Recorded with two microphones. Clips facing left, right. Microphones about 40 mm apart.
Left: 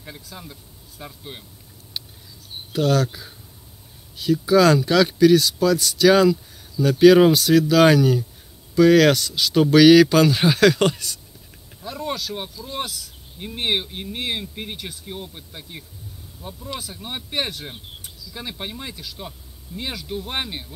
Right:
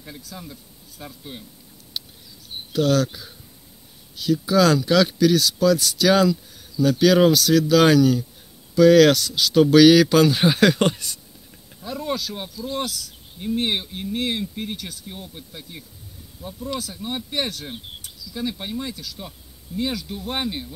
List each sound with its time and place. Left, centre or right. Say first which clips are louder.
0.0 s speech: right 1 dB; centre
2.7 s speech: even; centre
10.5 s speech: left 1 dB; centre
11.8 s speech: right 1 dB; centre
12.7 s speech: right 1 dB; left